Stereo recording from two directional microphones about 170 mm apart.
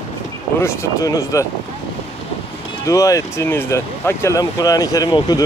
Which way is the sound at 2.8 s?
20° left (ahead or behind).